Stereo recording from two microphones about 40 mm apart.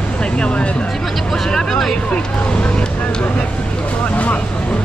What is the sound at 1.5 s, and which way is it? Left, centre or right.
Speech, centre.